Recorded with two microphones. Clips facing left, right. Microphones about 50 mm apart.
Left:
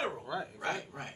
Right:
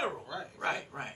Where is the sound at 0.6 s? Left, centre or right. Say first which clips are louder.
Right 2 dB; centre.